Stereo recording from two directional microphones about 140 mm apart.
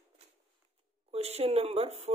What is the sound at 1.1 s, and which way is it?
Speech, 50° right (ahead or behind).